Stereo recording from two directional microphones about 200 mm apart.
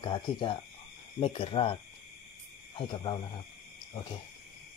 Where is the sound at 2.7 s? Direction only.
25° left (ahead or behind).